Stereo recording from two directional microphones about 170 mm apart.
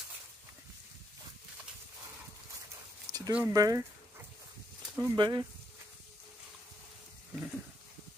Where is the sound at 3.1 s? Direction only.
45° right (ahead or behind).